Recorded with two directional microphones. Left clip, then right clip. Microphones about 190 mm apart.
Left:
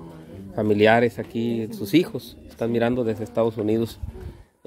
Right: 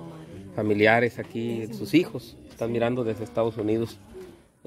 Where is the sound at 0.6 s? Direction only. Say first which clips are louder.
Left 3 dB; 15° left (ahead or behind).